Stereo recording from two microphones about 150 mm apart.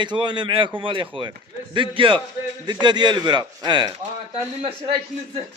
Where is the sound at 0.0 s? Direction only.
30° right (ahead or behind).